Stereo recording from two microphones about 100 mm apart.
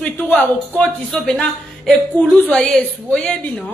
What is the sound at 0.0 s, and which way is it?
A woman's voice, 10° left (ahead or behind).